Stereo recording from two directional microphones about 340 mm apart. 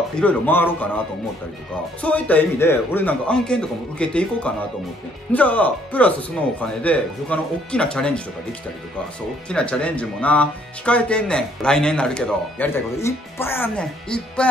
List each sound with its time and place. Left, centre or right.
0.2 s speech: centre
9.5 s speech: centre